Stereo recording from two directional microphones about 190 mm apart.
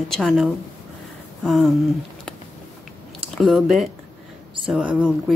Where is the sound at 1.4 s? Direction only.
Centre (ahead or behind).